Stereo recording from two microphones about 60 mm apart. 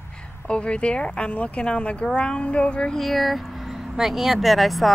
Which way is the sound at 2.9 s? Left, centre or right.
Centre.